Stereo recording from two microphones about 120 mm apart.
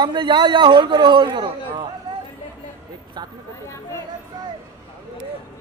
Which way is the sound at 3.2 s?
35° right (ahead or behind).